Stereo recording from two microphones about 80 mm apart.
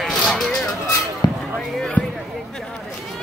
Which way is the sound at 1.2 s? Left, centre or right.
Left.